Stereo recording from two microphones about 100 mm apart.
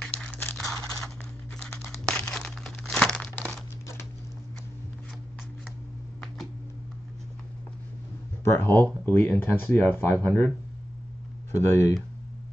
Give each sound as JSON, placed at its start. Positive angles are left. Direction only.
{"t": 0.0, "sound": "crumpling", "side_deg": 10}
{"t": 0.6, "sound": "scissors", "side_deg": 5}
{"t": 1.6, "sound": "tearing", "side_deg": 20}
{"t": 1.9, "sound": "crumpling", "side_deg": 10}
{"t": 8.5, "sound": "speech", "side_deg": 25}
{"t": 11.5, "sound": "speech", "side_deg": 25}